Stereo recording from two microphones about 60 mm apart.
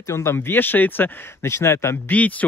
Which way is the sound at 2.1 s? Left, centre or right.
Left.